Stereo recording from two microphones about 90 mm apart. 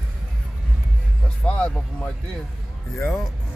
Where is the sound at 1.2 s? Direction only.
10° left (ahead or behind).